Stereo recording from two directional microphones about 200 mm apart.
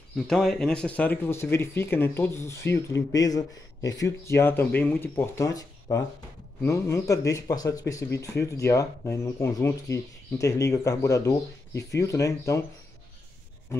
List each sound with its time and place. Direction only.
0.3 s speech: 5° left (ahead or behind)